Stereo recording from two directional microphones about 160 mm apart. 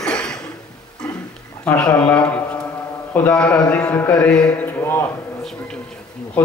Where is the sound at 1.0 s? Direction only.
5° left (ahead or behind).